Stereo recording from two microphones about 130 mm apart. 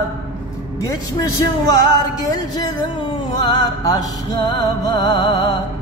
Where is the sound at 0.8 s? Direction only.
30° left (ahead or behind).